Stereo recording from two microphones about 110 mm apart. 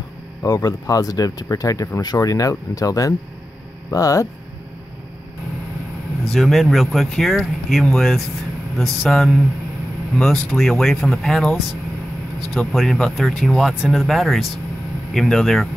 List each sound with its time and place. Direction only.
0.4 s speech: 35° left (ahead or behind)
6.2 s speech: centre (ahead or behind)